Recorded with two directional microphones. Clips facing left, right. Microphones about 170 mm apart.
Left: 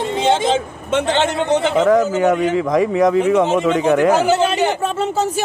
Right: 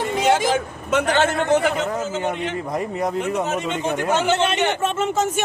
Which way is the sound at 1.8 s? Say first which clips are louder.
Left 10 dB; 90° left.